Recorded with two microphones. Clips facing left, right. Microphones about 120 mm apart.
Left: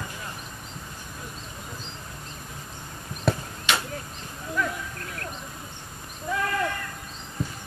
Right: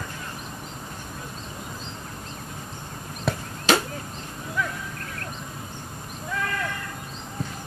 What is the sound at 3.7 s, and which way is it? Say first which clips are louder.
Chop: right 6 dB; 35° right (ahead or behind).